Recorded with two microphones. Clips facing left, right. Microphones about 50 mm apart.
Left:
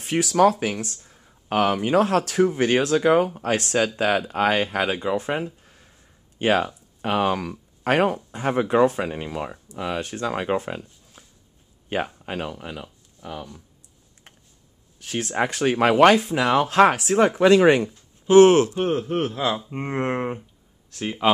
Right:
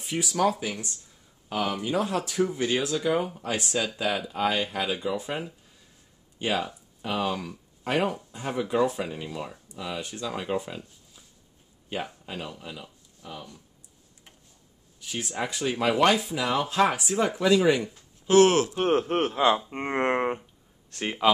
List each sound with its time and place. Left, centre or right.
0.0 s speech: left
0.5 s speech: left
15.0 s speech: left
18.3 s speech: left
19.1 s speech: centre